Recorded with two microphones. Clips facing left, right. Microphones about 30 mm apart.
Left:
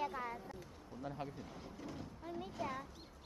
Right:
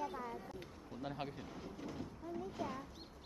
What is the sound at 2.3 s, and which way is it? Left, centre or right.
Speech, left.